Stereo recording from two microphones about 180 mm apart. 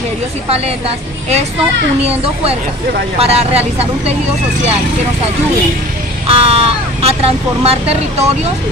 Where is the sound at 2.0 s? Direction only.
35° right (ahead or behind).